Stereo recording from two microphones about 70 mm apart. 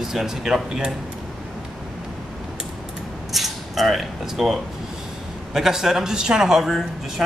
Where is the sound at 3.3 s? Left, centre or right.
Centre.